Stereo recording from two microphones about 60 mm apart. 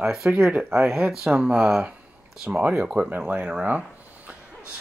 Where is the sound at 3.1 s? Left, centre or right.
Right.